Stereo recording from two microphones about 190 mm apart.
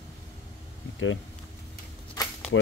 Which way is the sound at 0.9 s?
90° left.